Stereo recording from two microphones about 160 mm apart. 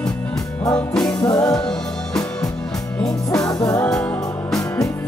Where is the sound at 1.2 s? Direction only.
20° left (ahead or behind).